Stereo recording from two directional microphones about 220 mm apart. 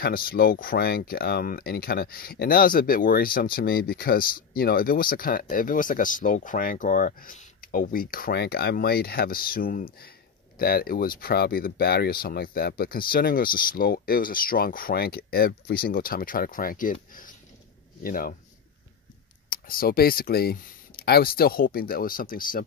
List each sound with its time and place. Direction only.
0.0 s speech: 40° left (ahead or behind)
19.5 s speech: 40° left (ahead or behind)